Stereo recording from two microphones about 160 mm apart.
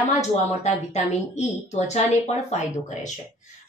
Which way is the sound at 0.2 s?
45° left (ahead or behind).